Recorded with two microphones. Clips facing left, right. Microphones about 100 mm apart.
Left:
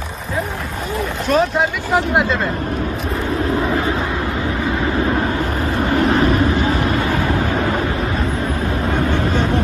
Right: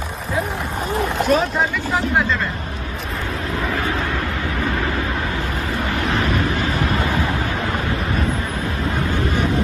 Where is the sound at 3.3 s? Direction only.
30° left (ahead or behind).